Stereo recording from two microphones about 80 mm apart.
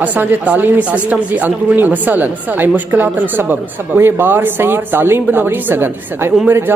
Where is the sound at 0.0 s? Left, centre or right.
Centre.